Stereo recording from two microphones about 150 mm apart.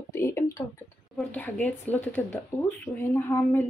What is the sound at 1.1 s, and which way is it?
Speech, 10° left (ahead or behind).